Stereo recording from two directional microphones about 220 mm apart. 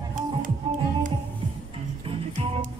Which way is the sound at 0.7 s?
25° right (ahead or behind).